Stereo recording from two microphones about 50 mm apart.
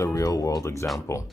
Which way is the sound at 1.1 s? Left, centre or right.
Left.